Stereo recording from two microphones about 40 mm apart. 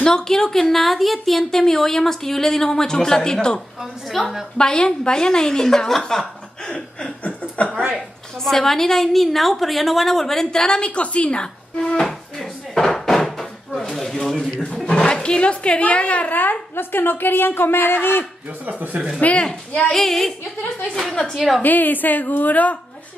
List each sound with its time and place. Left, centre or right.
0.0 s a woman's voice: centre
4.1 s a woman's voice: centre
4.6 s a woman's voice: left
6.0 s chuckle: centre
8.5 s a woman's voice: centre; by 11.5 s left
11.8 s a woman's voice: centre
12.1 s a sound: centre
13.7 s a woman's voice: centre; by 16.3 s left
16.3 s a woman's voice: left
19.2 s speech: left
19.9 s a woman's voice: centre
21.6 s a woman's voice: left